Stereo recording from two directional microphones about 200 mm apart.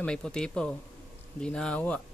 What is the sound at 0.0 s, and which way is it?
Speech, 5° left (ahead or behind).